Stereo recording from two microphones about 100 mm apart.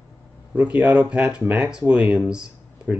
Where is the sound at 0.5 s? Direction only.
15° right (ahead or behind).